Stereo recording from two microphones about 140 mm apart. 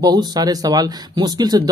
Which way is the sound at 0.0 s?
30° right (ahead or behind).